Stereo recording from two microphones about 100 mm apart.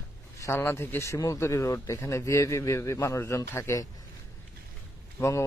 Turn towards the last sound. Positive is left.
turn(degrees=30)  # may be behind; listen again after turning